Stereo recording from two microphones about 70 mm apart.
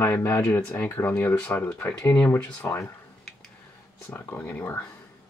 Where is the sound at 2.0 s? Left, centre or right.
Centre.